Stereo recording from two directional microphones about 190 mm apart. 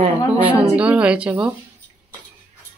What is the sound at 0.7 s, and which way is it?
Speech, 5° right (ahead or behind).